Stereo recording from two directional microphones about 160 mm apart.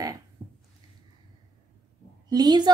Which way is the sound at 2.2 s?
25° right (ahead or behind).